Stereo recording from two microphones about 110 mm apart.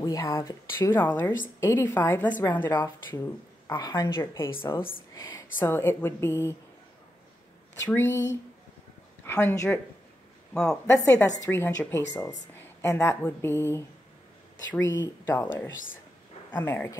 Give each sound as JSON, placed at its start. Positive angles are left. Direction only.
{"t": 0.0, "sound": "a woman's voice", "side_deg": 30}
{"t": 3.6, "sound": "a woman's voice", "side_deg": 35}
{"t": 4.2, "sound": "a woman's voice", "side_deg": 25}
{"t": 7.8, "sound": "a woman's voice", "side_deg": 25}
{"t": 9.2, "sound": "speech", "side_deg": 20}
{"t": 10.5, "sound": "speech", "side_deg": 5}
{"t": 10.9, "sound": "a woman's voice", "side_deg": 20}
{"t": 13.4, "sound": "a woman's voice", "side_deg": 25}
{"t": 14.9, "sound": "a woman's voice", "side_deg": 20}